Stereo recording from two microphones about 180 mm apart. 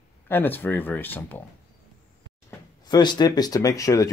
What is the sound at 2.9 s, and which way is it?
Speech, 25° left (ahead or behind).